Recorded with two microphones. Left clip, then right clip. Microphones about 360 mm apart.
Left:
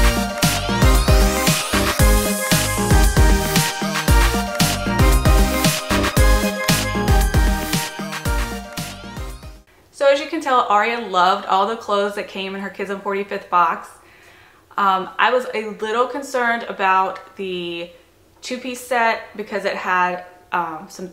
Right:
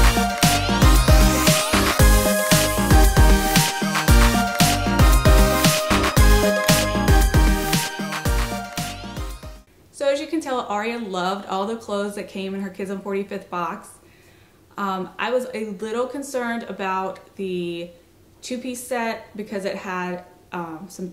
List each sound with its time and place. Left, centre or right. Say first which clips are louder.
0.0 s music: even; centre
9.9 s speech: left 5 dB; centre
14.8 s speech: left 9 dB; centre